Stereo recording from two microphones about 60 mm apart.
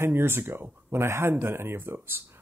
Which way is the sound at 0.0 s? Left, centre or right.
Right.